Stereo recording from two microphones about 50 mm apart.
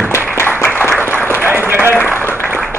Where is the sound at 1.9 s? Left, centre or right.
Left.